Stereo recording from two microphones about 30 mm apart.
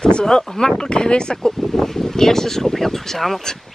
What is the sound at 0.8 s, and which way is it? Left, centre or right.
Speech, left.